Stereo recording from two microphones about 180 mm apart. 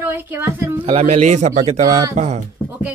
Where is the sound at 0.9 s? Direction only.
35° right (ahead or behind).